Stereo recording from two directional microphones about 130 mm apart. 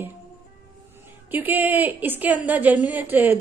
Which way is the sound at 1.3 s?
15° right (ahead or behind).